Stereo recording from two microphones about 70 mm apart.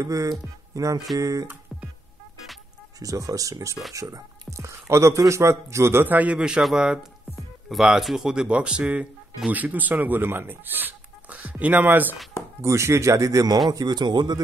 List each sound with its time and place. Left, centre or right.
0.0 s speech: right
3.0 s speech: right
6.0 s speech: right
12.6 s speech: right
13.7 s a man's voice: right